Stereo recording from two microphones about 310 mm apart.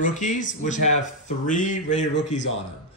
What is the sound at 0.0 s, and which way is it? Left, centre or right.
A man's voice, left.